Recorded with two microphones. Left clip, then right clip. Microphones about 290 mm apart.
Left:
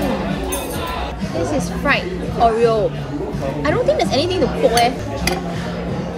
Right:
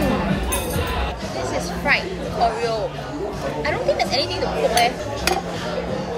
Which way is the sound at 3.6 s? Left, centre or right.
Centre.